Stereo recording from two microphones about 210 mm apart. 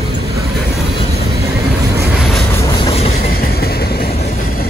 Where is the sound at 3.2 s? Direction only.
45° left (ahead or behind).